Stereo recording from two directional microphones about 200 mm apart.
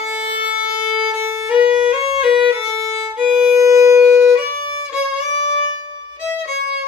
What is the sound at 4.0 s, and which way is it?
Music, 5° right (ahead or behind).